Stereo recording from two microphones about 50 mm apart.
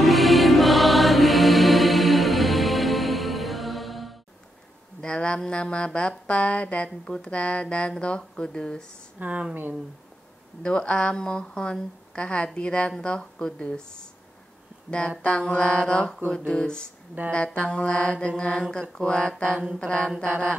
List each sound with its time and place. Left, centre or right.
0.0 s music: centre
5.0 s a sound: centre
5.9 s speech: centre
6.2 s a woman's voice: left
9.2 s speech: right
10.6 s a woman's voice: centre
14.9 s a woman's voice: left